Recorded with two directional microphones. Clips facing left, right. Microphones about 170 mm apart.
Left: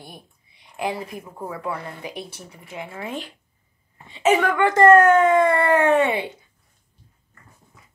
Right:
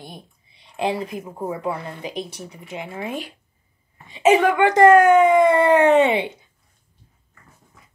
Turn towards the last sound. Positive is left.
turn(degrees=-20)  # may be behind; listen again after turning